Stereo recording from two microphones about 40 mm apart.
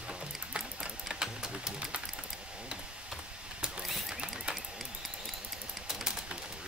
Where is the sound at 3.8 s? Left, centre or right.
Centre.